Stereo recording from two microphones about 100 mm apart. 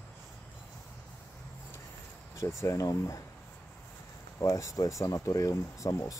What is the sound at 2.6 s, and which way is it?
Speech, 35° left (ahead or behind).